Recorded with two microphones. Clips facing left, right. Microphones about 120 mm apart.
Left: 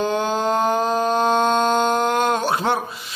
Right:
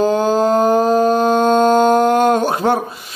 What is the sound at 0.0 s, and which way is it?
Music, 40° right (ahead or behind).